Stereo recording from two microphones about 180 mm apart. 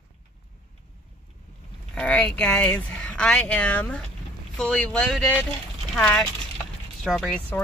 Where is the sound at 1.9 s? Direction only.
5° left (ahead or behind).